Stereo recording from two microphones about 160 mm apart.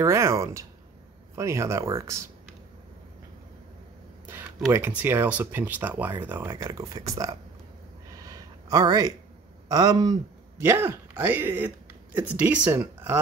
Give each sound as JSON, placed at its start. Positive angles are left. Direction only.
{"t": 0.0, "sound": "speech", "side_deg": -15}
{"t": 4.3, "sound": "speech", "side_deg": -15}
{"t": 8.2, "sound": "a sound", "side_deg": -25}
{"t": 9.7, "sound": "speech", "side_deg": -25}